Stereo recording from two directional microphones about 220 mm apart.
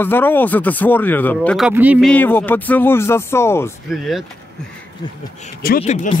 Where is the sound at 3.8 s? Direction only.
Centre (ahead or behind).